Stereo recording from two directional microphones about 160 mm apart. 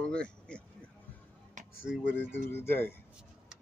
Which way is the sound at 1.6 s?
50° right (ahead or behind).